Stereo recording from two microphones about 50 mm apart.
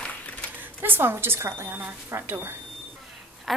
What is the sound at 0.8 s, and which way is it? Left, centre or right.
A woman's voice, right.